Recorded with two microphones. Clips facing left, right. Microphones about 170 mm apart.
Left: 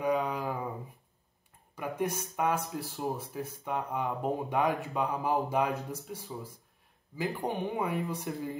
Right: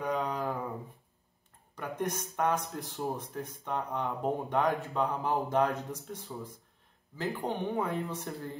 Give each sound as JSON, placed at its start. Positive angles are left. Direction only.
{"t": 0.0, "sound": "a sound", "side_deg": 10}
{"t": 1.8, "sound": "speech", "side_deg": 5}
{"t": 4.8, "sound": "speech", "side_deg": 15}
{"t": 5.3, "sound": "speech", "side_deg": 0}